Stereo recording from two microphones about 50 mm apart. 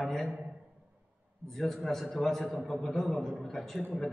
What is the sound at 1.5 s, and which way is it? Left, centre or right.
A man's voice, centre.